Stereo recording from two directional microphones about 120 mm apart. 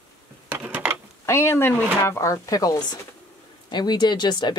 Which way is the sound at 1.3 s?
20° left (ahead or behind).